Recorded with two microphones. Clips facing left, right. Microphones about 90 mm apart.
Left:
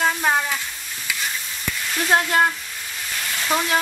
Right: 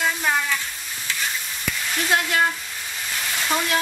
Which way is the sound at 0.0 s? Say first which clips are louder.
Left 3 dB; 30° left (ahead or behind).